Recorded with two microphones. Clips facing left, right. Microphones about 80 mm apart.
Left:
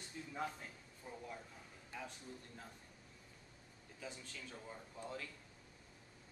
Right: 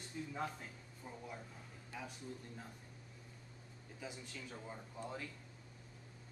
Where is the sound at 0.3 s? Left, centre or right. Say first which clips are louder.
Left 1 dB; centre.